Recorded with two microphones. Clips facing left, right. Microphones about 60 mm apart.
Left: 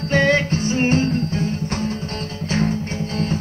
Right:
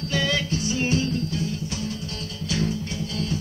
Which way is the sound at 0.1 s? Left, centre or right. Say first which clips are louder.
Left 8 dB; left.